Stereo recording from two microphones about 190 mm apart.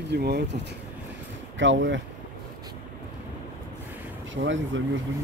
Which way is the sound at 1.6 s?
75° right (ahead or behind).